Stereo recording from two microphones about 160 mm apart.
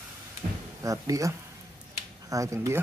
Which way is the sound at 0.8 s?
20° right (ahead or behind).